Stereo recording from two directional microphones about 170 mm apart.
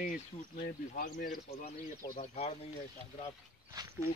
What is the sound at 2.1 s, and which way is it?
Speech, 40° left (ahead or behind).